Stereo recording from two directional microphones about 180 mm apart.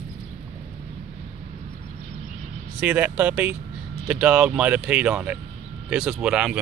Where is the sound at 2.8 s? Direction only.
10° right (ahead or behind).